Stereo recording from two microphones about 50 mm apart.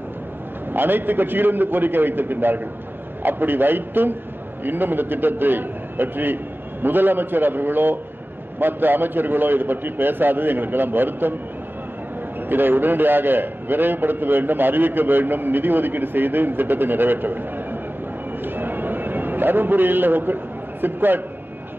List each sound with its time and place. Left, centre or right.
0.7 s a man's voice: right
12.4 s a man's voice: right
18.4 s a sound: right
20.8 s a man's voice: right